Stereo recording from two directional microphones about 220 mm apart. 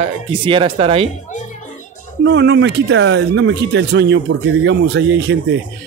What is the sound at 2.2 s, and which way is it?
Speech, 50° right (ahead or behind).